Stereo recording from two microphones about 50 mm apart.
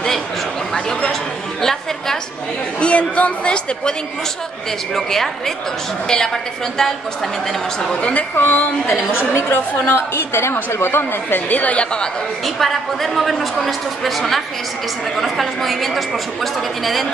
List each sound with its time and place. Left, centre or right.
0.7 s speech: centre
1.6 s a sound: centre
2.8 s a woman's voice: left
4.9 s a woman's voice: centre
7.9 s a woman's voice: left
12.4 s a woman's voice: centre